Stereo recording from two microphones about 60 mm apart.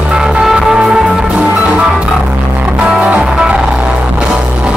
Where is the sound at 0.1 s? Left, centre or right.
Centre.